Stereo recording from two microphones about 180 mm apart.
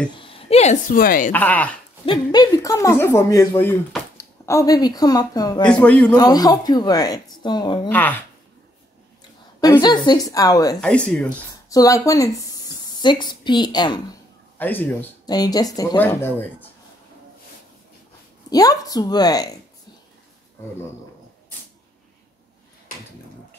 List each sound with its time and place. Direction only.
0.2 s a woman's voice: 30° left (ahead or behind); by 1.3 s 50° left (ahead or behind)
1.3 s speech: 10° left (ahead or behind)
2.0 s speech: 25° left (ahead or behind)
5.6 s speech: 5° left (ahead or behind)
6.1 s speech: 20° left (ahead or behind)
7.9 s speech: 10° left (ahead or behind)
9.6 s speech: 20° left (ahead or behind)
10.8 s speech: 5° left (ahead or behind)
11.7 s speech: 20° left (ahead or behind)
14.6 s speech: 10° left (ahead or behind)
15.2 s speech: 20° left (ahead or behind)
18.5 s speech: 20° left (ahead or behind)